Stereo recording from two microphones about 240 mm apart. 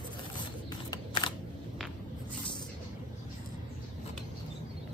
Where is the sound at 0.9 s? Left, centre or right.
Centre.